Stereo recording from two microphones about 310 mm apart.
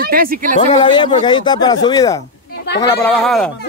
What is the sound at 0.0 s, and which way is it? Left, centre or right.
Speech, right.